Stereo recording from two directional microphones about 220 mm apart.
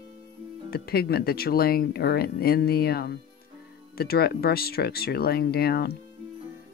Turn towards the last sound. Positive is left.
turn(degrees=45)  # may be behind; listen again after turning